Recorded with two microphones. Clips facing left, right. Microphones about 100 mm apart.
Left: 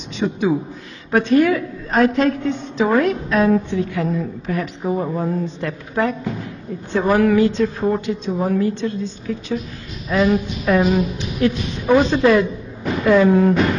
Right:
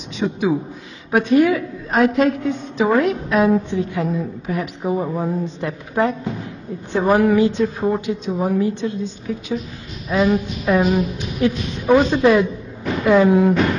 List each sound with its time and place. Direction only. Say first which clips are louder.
0.2 s a woman's voice: left 1 dB; 5° right (ahead or behind)
3.0 s a woman's voice: even; 15° right (ahead or behind)